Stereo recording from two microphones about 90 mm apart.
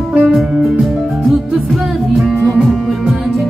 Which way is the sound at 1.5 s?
Centre (ahead or behind).